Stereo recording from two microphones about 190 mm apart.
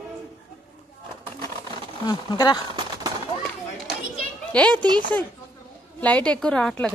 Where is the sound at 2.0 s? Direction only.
20° left (ahead or behind).